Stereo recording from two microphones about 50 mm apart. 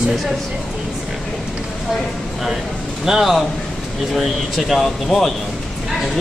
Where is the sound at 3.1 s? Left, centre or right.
Centre.